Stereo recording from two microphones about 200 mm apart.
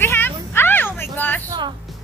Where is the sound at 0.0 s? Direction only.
10° left (ahead or behind).